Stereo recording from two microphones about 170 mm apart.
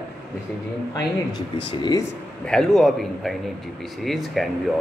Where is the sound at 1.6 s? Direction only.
25° left (ahead or behind).